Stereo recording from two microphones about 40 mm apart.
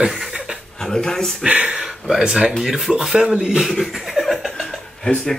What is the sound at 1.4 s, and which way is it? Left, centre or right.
Speech, right.